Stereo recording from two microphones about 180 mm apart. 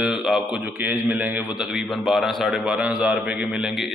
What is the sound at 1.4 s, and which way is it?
Speech, 20° left (ahead or behind).